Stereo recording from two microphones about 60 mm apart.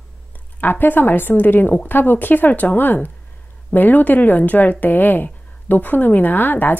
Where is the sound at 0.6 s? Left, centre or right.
Left.